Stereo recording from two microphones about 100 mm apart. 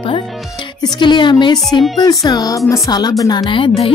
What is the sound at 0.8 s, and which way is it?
Speech, 45° left (ahead or behind).